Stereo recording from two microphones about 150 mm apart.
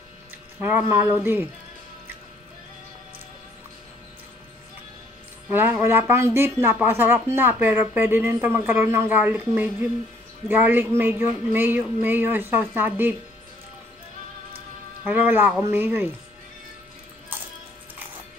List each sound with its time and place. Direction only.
0.6 s speech: 15° right (ahead or behind)
5.5 s speech: 15° right (ahead or behind)
15.0 s speech: 15° right (ahead or behind)
17.3 s music: 10° right (ahead or behind)